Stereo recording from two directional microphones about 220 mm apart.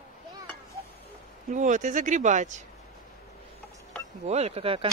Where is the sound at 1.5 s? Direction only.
35° right (ahead or behind).